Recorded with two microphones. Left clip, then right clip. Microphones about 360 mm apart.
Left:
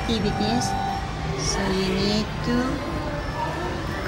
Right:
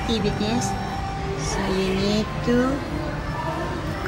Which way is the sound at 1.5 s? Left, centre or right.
Centre.